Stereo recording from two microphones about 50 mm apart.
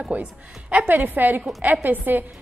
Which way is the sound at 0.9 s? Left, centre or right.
Right.